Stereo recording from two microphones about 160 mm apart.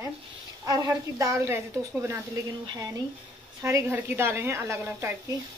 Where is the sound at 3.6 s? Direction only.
20° right (ahead or behind).